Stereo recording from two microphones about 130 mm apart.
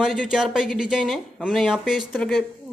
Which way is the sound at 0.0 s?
5° right (ahead or behind).